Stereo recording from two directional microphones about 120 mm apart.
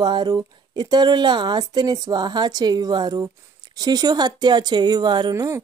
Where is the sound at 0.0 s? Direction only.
35° right (ahead or behind).